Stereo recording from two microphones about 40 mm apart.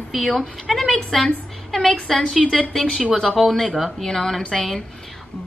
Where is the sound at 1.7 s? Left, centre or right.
Left.